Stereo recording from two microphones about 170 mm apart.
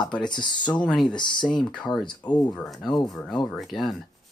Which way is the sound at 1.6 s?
5° left (ahead or behind).